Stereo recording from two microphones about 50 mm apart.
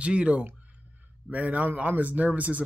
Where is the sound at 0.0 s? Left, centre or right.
Right.